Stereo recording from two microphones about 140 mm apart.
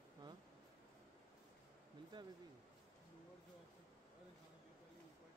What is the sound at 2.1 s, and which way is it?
Speech, 35° right (ahead or behind).